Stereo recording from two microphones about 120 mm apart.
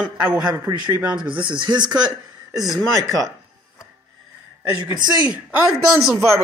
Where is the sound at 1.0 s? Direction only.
10° right (ahead or behind).